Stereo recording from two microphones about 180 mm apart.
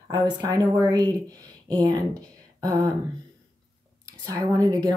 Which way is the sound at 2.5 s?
20° right (ahead or behind).